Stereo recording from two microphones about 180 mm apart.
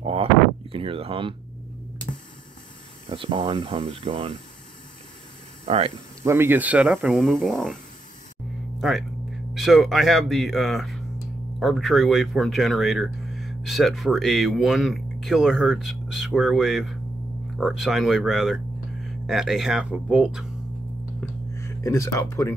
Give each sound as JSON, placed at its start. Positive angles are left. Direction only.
{"t": 0.0, "sound": "a sound", "side_deg": -30}
{"t": 3.1, "sound": "speech", "side_deg": -30}
{"t": 5.7, "sound": "speech", "side_deg": -30}
{"t": 6.2, "sound": "speech", "side_deg": -15}
{"t": 8.8, "sound": "speech", "side_deg": 0}
{"t": 21.5, "sound": "speech", "side_deg": 15}